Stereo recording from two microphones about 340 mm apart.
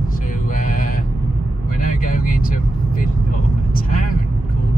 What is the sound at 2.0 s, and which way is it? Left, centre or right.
Vehicle, left.